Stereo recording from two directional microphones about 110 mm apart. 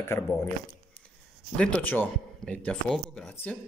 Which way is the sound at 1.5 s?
10° left (ahead or behind).